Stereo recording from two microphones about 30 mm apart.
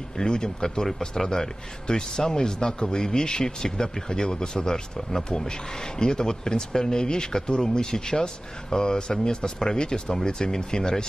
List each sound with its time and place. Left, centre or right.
0.2 s a man's voice: left
0.8 s a man's voice: centre; by 11.1 s left